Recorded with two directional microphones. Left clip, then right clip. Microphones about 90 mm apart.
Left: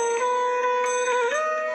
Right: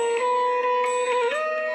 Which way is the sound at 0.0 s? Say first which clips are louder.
Right 1 dB; 15° right (ahead or behind).